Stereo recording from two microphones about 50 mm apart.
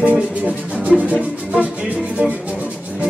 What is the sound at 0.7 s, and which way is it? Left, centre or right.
Music, right.